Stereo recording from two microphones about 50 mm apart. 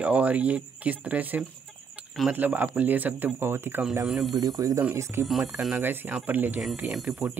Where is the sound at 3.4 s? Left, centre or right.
Right.